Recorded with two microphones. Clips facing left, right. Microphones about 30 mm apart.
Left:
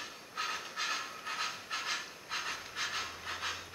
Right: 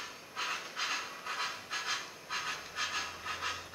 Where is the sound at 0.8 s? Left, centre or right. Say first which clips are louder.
Left 1 dB; centre.